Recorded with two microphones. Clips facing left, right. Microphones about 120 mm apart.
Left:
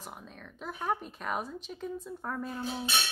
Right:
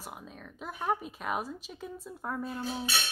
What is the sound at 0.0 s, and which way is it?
Speech, 5° right (ahead or behind).